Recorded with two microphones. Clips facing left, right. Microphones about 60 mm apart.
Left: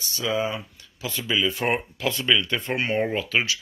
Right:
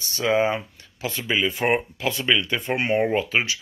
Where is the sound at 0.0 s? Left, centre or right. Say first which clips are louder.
Right 5 dB; right.